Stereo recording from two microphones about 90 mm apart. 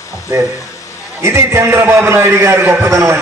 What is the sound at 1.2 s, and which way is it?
A man's voice, 30° right (ahead or behind).